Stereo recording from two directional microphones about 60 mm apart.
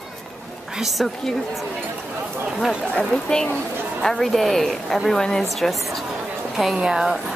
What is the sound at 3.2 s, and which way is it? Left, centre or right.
A woman's voice, centre.